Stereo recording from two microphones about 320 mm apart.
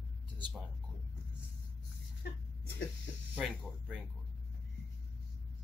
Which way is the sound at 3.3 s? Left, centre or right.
Centre.